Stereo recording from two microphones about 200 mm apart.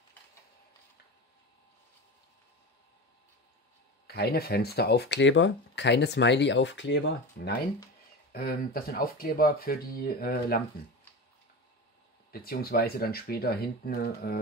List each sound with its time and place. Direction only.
4.1 s speech: 50° left (ahead or behind)
12.3 s speech: 50° left (ahead or behind)